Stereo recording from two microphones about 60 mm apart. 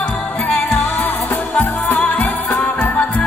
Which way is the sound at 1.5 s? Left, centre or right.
Left.